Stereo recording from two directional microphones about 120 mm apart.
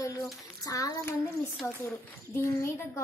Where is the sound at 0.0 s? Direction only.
30° left (ahead or behind).